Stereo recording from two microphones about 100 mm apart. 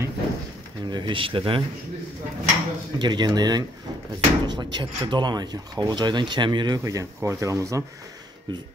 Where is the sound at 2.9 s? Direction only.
45° right (ahead or behind).